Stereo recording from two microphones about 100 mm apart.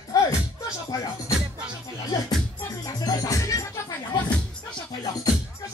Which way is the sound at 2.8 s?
40° left (ahead or behind).